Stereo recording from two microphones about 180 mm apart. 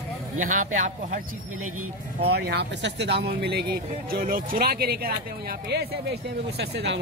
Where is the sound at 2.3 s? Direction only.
65° right (ahead or behind).